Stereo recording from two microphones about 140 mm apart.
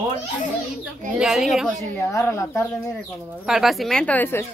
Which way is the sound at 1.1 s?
Centre (ahead or behind).